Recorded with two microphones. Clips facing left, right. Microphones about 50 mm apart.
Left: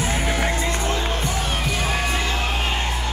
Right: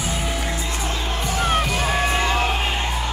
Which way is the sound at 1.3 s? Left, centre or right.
Right.